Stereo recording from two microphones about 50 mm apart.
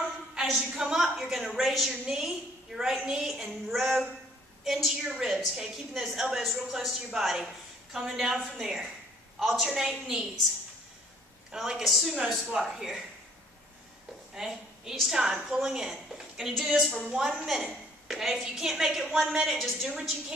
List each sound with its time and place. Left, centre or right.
0.5 s a woman's voice: centre
11.5 s a woman's voice: centre
14.3 s a woman's voice: centre
17.6 s a woman's voice: centre
19.9 s a woman's voice: centre